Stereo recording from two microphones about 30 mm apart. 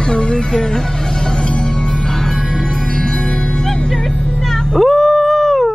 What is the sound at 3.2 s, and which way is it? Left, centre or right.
Music, centre.